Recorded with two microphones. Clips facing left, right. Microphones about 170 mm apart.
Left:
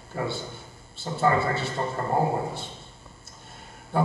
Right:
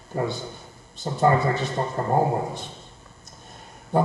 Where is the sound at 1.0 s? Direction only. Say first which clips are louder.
Right 3 dB; 20° right (ahead or behind).